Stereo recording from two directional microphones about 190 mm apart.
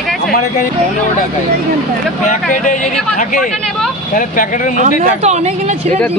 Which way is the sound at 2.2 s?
40° left (ahead or behind).